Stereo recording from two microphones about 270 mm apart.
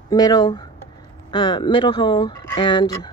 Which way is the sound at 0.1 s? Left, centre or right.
Centre.